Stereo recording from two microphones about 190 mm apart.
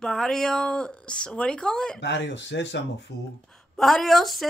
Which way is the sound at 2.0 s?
70° left (ahead or behind).